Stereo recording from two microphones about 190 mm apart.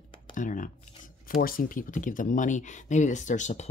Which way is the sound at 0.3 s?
45° left (ahead or behind).